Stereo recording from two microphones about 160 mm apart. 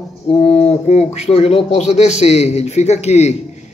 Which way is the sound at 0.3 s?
40° left (ahead or behind).